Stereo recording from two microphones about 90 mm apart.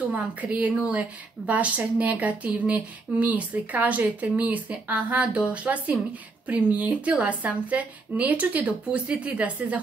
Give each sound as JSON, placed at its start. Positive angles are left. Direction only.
{"t": 0.1, "sound": "a woman's voice", "side_deg": -15}